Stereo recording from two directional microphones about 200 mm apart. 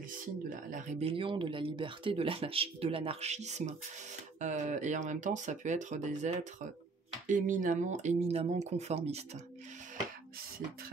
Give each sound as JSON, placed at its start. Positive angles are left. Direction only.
{"t": 0.5, "sound": "speech", "side_deg": -40}